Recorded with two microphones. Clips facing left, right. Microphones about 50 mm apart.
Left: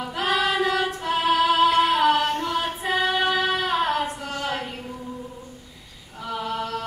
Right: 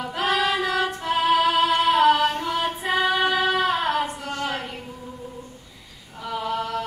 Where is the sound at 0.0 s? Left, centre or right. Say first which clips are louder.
Right 1 dB; centre.